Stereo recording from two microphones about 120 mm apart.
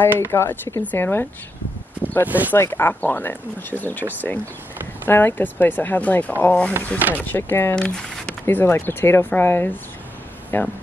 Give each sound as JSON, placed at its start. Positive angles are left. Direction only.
{"t": 0.3, "sound": "speech", "side_deg": 20}
{"t": 2.2, "sound": "speech", "side_deg": -15}
{"t": 2.5, "sound": "speech", "side_deg": 20}
{"t": 7.0, "sound": "speech", "side_deg": -15}
{"t": 7.2, "sound": "speech", "side_deg": 15}
{"t": 7.7, "sound": "speech", "side_deg": 5}
{"t": 8.5, "sound": "speech", "side_deg": 15}